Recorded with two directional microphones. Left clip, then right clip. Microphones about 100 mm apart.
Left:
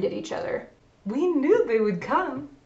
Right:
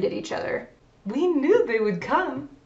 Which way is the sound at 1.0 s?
25° right (ahead or behind).